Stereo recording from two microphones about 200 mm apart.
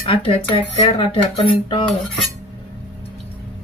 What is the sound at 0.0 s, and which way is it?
Speech, 30° left (ahead or behind).